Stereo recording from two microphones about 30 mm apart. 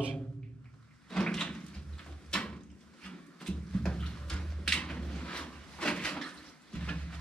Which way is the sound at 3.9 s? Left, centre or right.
Left.